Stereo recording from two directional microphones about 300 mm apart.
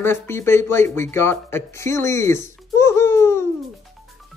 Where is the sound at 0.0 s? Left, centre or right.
Centre.